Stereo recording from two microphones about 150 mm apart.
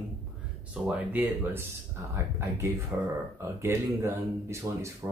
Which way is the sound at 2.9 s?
15° right (ahead or behind).